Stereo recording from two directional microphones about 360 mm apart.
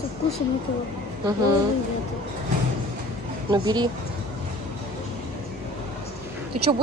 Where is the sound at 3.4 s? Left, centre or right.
Centre.